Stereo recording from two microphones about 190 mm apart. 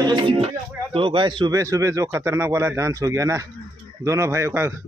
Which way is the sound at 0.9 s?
25° right (ahead or behind).